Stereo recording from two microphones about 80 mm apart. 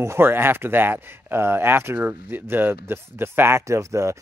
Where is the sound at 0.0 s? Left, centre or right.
Right.